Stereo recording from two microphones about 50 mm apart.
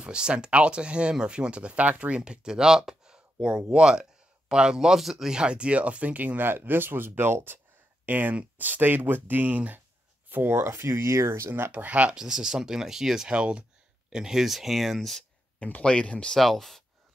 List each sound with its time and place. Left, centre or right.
0.0 s speech: centre
10.3 s speech: right
11.7 s speech: right
12.2 s speech: centre
15.6 s speech: left
16.3 s speech: centre